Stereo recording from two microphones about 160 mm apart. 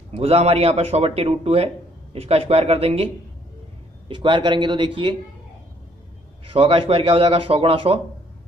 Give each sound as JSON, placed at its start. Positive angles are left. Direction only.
{"t": 0.1, "sound": "speech", "side_deg": -40}
{"t": 4.1, "sound": "speech", "side_deg": -30}
{"t": 6.5, "sound": "speech", "side_deg": -35}